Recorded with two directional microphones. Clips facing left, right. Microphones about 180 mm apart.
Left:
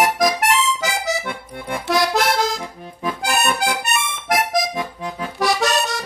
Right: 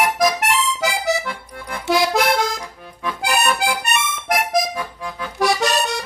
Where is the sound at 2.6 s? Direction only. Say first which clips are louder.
Left 2 dB; 25° left (ahead or behind).